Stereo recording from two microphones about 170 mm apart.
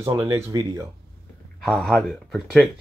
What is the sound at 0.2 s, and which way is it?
Speech, 15° right (ahead or behind).